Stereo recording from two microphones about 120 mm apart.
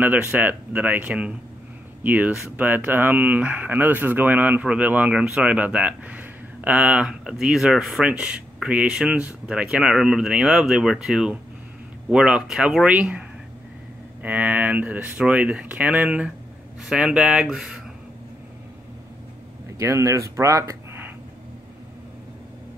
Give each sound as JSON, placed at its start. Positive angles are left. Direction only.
{"t": 0.0, "sound": "speech", "side_deg": -15}
{"t": 14.2, "sound": "speech", "side_deg": -15}
{"t": 19.8, "sound": "speech", "side_deg": -25}